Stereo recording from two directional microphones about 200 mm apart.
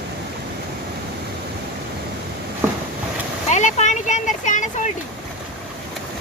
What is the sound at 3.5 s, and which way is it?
Speech, 35° left (ahead or behind).